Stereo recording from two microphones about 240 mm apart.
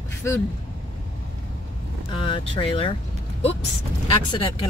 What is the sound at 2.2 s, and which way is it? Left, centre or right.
Speech, left.